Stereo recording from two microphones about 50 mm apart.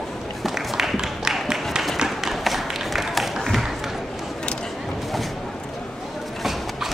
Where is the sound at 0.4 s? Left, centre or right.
Centre.